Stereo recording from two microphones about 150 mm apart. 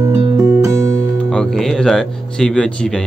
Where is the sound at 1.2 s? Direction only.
5° left (ahead or behind).